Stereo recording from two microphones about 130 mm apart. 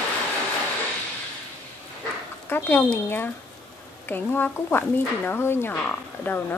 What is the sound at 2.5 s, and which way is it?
A woman's voice, 15° left (ahead or behind).